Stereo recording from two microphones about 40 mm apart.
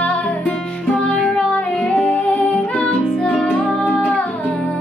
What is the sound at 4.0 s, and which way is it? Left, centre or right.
Music, left.